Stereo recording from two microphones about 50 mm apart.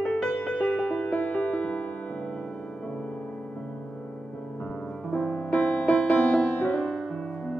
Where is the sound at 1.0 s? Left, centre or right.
Left.